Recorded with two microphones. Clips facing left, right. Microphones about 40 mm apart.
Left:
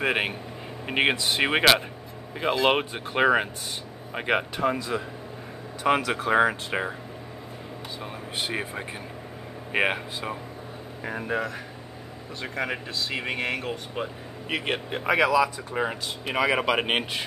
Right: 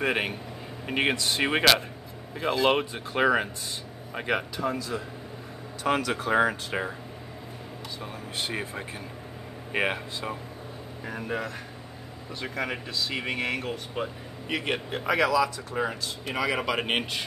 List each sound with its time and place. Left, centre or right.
0.0 s speech: centre
5.9 s speech: centre
8.0 s speech: centre